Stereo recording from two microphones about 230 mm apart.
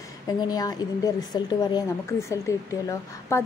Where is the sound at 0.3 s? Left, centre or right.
Centre.